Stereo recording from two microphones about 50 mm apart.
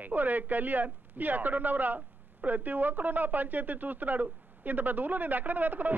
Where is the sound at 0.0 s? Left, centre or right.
Right.